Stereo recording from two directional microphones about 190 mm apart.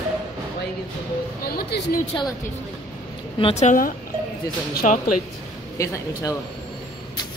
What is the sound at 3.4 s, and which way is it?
Speech, 35° left (ahead or behind).